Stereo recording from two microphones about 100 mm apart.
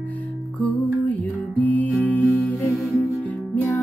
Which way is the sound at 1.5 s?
15° left (ahead or behind).